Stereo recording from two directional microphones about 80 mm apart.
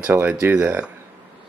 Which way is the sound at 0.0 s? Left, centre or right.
Right.